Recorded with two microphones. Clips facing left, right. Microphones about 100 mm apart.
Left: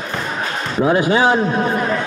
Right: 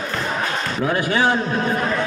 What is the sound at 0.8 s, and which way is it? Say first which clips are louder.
Speech: left 6 dB; 20° left (ahead or behind).